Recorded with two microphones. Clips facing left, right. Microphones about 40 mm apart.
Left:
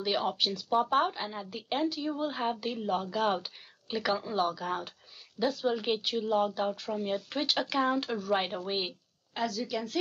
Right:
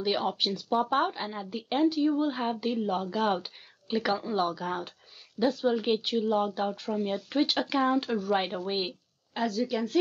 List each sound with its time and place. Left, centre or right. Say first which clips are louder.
0.0 s speech: right 2 dB; centre
0.4 s speech: right 1 dB; centre
0.7 s a woman's voice: even; centre
9.5 s speech: right 5 dB; centre